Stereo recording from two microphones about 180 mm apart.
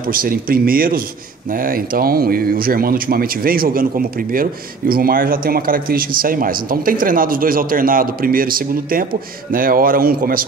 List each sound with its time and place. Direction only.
0.0 s speech: 55° right (ahead or behind)